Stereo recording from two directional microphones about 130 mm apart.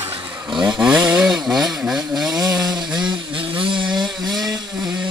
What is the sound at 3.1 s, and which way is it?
Vehicle, 35° right (ahead or behind).